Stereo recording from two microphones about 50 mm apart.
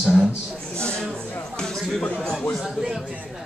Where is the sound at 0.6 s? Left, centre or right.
Centre.